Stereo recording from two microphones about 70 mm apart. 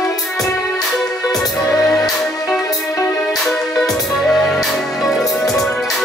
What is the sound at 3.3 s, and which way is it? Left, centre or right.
Music, centre.